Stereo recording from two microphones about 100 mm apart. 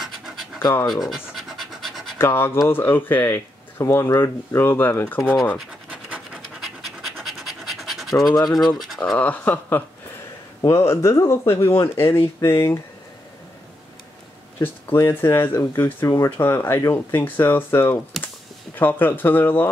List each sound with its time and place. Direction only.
0.0 s pant: centre (ahead or behind)
0.8 s scratch: centre (ahead or behind)
2.1 s speech: 20° left (ahead or behind)
5.9 s scratch: 15° right (ahead or behind)
6.6 s scratch: centre (ahead or behind)
8.5 s speech: centre (ahead or behind)
9.2 s speech: 15° left (ahead or behind)
14.6 s speech: 25° left (ahead or behind)